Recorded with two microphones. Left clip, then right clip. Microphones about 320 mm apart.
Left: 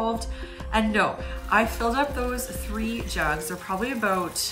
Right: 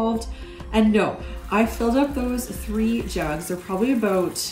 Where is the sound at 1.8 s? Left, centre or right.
Centre.